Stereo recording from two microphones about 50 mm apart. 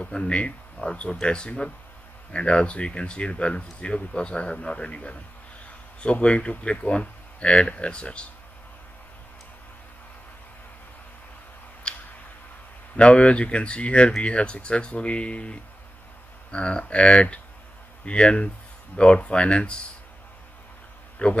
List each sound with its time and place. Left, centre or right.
0.1 s speech: left
11.9 s a sound: left
12.9 s speech: left
21.2 s speech: left